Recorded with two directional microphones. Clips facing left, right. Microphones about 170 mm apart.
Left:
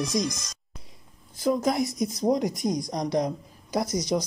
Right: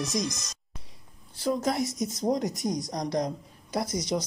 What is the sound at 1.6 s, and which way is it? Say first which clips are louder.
Speech: left 3 dB; 15° left (ahead or behind).